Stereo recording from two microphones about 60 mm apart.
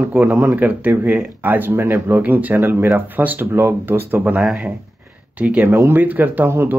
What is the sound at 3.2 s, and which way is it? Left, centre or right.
Speech, right.